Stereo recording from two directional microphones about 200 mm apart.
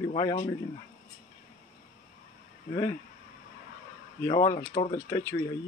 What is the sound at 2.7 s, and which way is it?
Speech, 15° left (ahead or behind).